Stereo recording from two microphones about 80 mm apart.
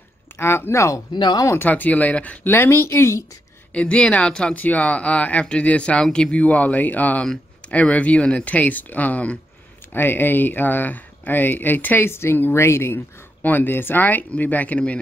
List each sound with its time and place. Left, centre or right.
0.4 s a woman's voice: left
1.1 s speech: left
1.6 s speech: left
2.4 s a woman's voice: left
3.7 s speech: centre